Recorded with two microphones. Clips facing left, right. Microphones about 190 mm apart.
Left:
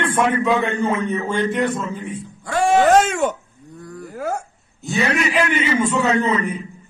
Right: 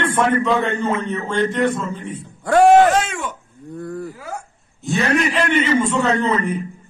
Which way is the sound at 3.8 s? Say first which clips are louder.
Right 7 dB; 55° right (ahead or behind).